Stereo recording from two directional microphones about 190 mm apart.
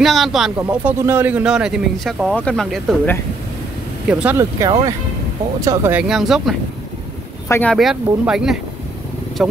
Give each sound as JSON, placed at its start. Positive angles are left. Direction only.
{"t": 0.0, "sound": "speech", "side_deg": 0}
{"t": 7.4, "sound": "speech", "side_deg": 15}
{"t": 7.7, "sound": "speech", "side_deg": 0}